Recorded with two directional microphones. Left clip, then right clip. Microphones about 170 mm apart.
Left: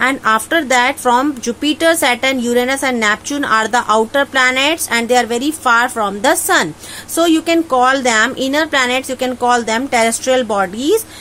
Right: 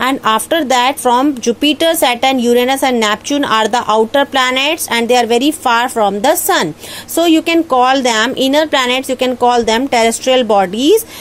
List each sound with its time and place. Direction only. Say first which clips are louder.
0.0 s a woman's voice: right 1 dB; 30° right (ahead or behind)